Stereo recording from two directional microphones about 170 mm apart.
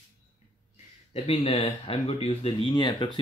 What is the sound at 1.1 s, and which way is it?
Speech, 35° left (ahead or behind).